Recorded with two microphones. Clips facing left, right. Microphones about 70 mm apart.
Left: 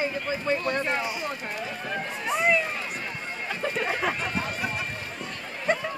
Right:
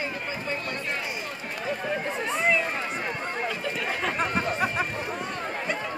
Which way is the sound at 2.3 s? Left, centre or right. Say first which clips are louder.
Left 2 dB; centre.